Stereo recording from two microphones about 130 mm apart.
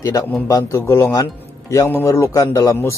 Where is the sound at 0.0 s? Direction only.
20° left (ahead or behind).